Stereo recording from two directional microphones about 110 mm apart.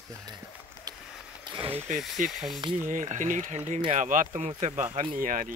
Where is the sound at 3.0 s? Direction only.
90° right.